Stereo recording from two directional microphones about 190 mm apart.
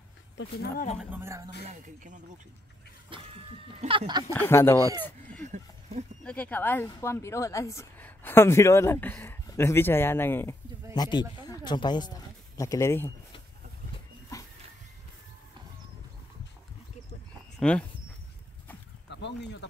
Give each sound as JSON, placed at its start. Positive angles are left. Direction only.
{"t": 1.2, "sound": "speech", "side_deg": -15}
{"t": 1.6, "sound": "speech", "side_deg": -40}
{"t": 3.1, "sound": "a sound", "side_deg": -30}
{"t": 4.3, "sound": "speech", "side_deg": 15}
{"t": 4.7, "sound": "a sound", "side_deg": -20}
{"t": 5.5, "sound": "a sound", "side_deg": -35}
{"t": 6.2, "sound": "speech", "side_deg": 5}
{"t": 11.0, "sound": "speech", "side_deg": 20}
{"t": 17.6, "sound": "speech", "side_deg": 5}
{"t": 19.0, "sound": "speech", "side_deg": 65}